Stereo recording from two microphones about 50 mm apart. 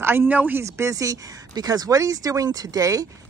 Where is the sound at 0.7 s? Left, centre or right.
Right.